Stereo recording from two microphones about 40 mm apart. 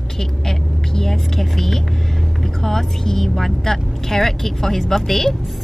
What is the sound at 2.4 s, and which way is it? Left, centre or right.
A woman's voice, centre.